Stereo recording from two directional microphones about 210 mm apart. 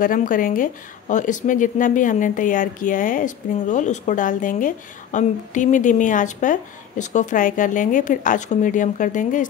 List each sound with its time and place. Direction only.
0.0 s speech: 40° left (ahead or behind)